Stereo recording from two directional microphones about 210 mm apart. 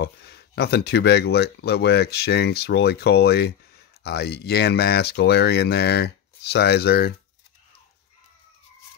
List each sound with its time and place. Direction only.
0.0 s speech: 50° left (ahead or behind)